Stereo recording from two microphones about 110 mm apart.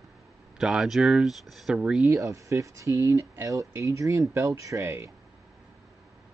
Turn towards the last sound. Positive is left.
turn(degrees=-25)  # may be behind; listen again after turning